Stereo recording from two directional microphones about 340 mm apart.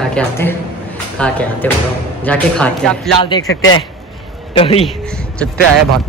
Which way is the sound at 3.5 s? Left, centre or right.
Left.